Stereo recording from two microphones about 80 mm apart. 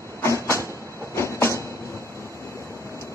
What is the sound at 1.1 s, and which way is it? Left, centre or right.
Train, left.